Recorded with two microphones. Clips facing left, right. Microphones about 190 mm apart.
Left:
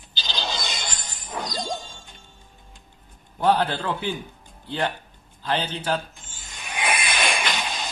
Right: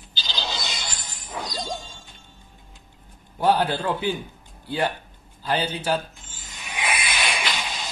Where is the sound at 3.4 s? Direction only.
10° right (ahead or behind).